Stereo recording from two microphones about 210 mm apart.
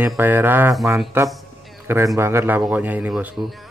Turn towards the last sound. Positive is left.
turn(degrees=0)  # may be behind; listen again after turning